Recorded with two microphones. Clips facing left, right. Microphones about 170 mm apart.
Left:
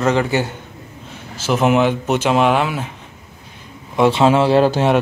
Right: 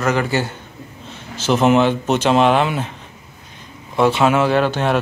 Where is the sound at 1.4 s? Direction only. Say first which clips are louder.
Right 1 dB; 10° left (ahead or behind).